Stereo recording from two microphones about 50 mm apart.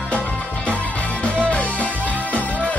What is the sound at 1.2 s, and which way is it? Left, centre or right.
Music, left.